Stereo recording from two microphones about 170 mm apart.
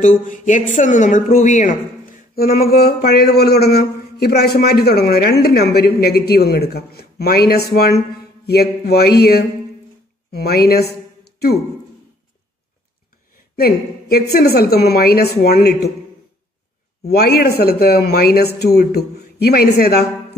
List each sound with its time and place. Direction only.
0.0 s a woman's voice: 50° left (ahead or behind)
2.3 s speech: 60° left (ahead or behind)
13.6 s a woman's voice: 65° left (ahead or behind)
17.0 s speech: 65° left (ahead or behind)